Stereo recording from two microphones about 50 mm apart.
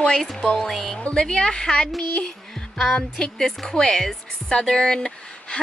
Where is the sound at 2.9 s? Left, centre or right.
Centre.